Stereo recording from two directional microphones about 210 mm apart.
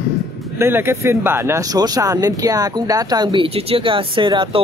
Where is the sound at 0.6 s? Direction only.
10° right (ahead or behind).